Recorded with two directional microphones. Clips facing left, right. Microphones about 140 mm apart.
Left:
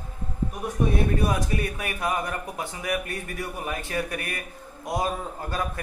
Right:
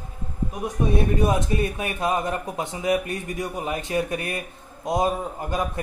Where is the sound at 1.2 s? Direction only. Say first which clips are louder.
Right 4 dB; 25° right (ahead or behind).